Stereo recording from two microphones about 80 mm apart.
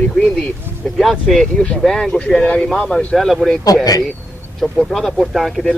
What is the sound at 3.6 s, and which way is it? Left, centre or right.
Speech, left.